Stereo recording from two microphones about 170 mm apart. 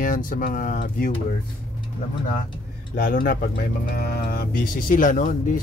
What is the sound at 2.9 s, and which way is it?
Speech, 55° left (ahead or behind).